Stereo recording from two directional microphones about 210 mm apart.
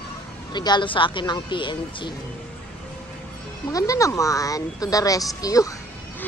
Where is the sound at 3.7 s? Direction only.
15° left (ahead or behind).